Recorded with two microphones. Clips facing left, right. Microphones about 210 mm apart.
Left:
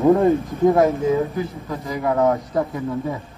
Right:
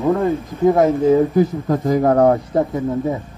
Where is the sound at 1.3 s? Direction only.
50° right (ahead or behind).